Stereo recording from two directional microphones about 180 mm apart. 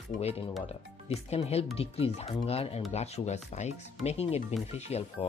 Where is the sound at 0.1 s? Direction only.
35° left (ahead or behind).